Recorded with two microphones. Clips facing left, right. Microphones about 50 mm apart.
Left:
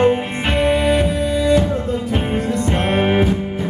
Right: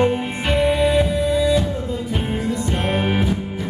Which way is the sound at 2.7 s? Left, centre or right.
Left.